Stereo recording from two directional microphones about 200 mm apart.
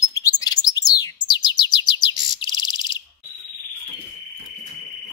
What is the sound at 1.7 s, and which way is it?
Chirp, 20° left (ahead or behind).